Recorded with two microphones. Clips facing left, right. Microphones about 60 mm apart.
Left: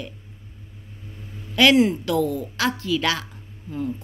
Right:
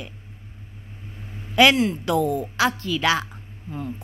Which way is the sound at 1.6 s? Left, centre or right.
Centre.